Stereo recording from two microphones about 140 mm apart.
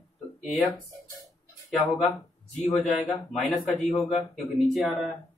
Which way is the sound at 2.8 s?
Centre (ahead or behind).